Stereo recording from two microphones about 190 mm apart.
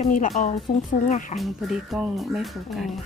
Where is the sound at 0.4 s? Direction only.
40° left (ahead or behind).